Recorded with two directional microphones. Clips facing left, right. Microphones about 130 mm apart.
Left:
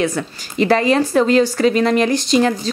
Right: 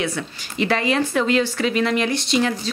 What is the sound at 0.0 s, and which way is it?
A woman's voice, 40° left (ahead or behind).